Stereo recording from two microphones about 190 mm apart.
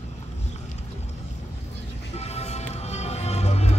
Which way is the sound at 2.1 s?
35° left (ahead or behind).